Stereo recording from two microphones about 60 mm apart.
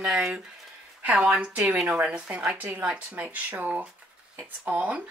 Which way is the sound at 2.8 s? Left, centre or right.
Centre.